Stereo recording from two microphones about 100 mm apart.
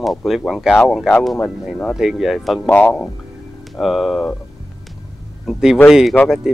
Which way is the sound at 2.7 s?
15° left (ahead or behind).